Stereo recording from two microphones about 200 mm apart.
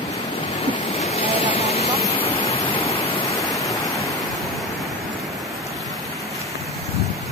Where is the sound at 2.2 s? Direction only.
30° left (ahead or behind).